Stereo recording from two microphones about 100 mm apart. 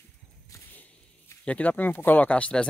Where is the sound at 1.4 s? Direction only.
15° left (ahead or behind).